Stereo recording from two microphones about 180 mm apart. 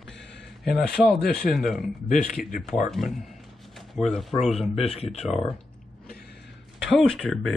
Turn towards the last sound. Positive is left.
turn(degrees=5)  # may be behind; listen again after turning